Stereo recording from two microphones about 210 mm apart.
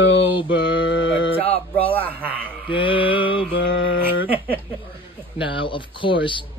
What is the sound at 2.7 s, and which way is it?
Mantra, 25° left (ahead or behind).